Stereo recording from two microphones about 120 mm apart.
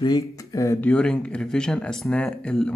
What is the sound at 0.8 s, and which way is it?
Speech, 5° left (ahead or behind).